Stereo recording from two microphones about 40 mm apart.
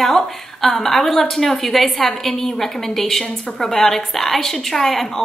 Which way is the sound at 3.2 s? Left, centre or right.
Left.